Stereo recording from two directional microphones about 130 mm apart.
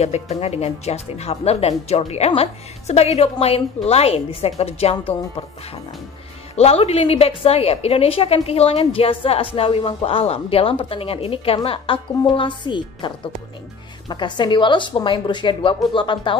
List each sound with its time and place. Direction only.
0.0 s a woman's voice: 55° left (ahead or behind)
6.5 s a woman's voice: 50° left (ahead or behind)